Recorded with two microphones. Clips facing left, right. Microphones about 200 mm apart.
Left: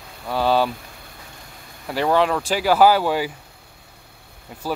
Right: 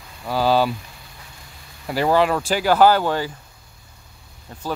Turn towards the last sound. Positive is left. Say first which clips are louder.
# left 1 dB
turn(degrees=10)  # may be behind; listen again after turning